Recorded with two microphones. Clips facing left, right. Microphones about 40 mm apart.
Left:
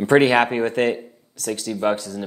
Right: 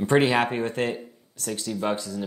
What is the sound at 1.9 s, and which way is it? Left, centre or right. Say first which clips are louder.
Speech: left 2 dB; left.